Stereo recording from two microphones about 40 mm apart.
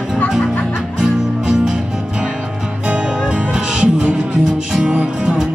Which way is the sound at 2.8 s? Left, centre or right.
Right.